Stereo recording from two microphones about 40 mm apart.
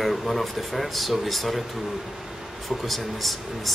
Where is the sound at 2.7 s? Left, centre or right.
Centre.